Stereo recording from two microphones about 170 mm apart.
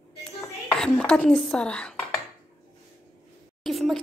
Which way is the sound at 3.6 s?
Centre (ahead or behind).